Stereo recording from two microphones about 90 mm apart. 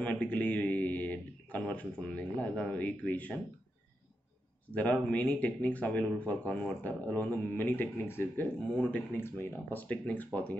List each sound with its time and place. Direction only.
0.0 s speech: 15° left (ahead or behind)
4.7 s speech: 15° left (ahead or behind)
8.7 s speech: 15° left (ahead or behind)